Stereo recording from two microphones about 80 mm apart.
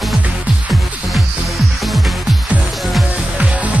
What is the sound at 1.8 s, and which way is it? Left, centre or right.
Music, centre.